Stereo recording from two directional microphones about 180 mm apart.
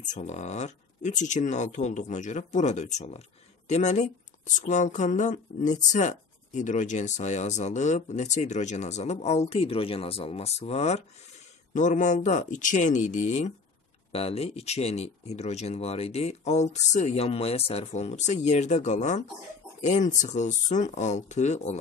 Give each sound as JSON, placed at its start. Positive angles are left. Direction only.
{"t": 0.1, "sound": "speech", "side_deg": 40}